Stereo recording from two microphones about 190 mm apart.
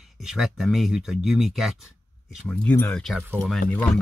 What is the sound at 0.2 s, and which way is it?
Speech, centre (ahead or behind).